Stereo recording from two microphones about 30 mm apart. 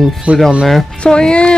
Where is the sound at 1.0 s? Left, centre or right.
Left.